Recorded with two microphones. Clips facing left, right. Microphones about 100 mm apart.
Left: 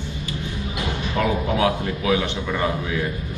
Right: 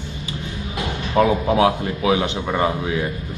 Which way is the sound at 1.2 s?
30° right (ahead or behind).